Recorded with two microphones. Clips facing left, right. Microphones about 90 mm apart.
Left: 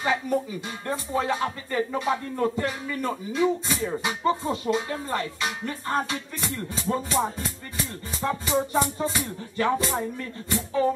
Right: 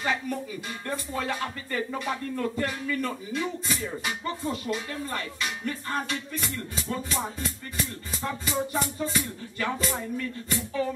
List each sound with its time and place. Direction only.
0.0 s speech: 20° left (ahead or behind)